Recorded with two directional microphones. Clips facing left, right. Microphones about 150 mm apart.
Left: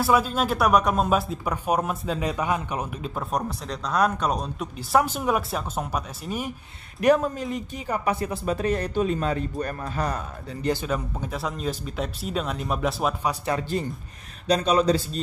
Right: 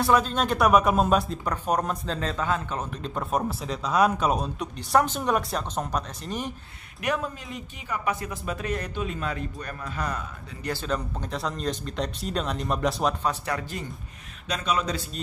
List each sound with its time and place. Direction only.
0.0 s speech: 5° left (ahead or behind)
3.2 s speech: centre (ahead or behind)
7.0 s speech: 40° left (ahead or behind)
10.6 s speech: 20° left (ahead or behind)
10.9 s speech: 5° left (ahead or behind)
13.5 s speech: 30° left (ahead or behind)